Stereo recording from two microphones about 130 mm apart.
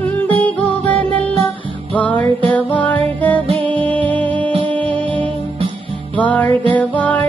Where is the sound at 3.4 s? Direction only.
50° right (ahead or behind).